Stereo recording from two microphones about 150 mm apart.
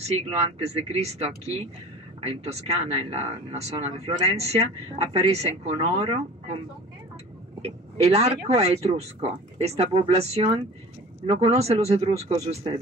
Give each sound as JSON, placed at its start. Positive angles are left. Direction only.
{"t": 0.3, "sound": "speech", "side_deg": -45}
{"t": 7.6, "sound": "speech", "side_deg": -45}